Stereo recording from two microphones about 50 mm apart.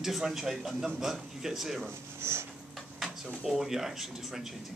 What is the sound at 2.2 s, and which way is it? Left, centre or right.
Tick-tock, right.